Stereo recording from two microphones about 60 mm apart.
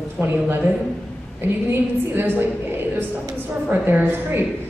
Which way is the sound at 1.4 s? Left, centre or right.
Right.